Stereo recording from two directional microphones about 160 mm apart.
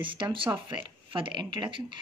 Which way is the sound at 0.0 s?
30° right (ahead or behind).